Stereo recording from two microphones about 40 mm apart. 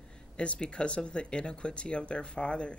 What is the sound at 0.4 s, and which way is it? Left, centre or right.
Speech, left.